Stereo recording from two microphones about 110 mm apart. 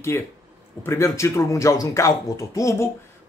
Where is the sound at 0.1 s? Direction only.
25° left (ahead or behind).